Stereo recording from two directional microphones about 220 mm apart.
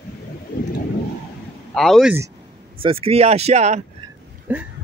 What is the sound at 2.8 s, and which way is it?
Speech, 25° right (ahead or behind).